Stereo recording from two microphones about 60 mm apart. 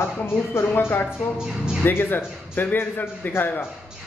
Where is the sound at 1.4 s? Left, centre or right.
Centre.